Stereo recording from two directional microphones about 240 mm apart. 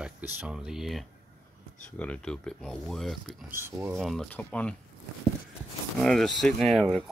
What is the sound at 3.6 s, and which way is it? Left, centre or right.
Speech, centre.